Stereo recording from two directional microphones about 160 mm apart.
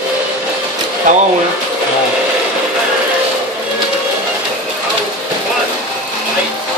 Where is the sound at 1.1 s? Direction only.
50° right (ahead or behind).